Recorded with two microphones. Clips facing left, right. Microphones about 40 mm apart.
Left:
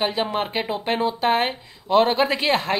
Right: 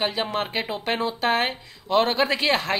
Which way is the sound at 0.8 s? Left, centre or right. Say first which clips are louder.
Left 3 dB; left.